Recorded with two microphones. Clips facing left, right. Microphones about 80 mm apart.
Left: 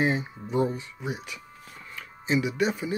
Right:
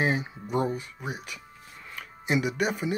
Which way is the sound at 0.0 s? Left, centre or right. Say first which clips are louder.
Left 1 dB; centre.